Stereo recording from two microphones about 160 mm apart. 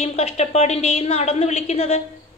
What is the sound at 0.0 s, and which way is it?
A woman's voice, 40° left (ahead or behind).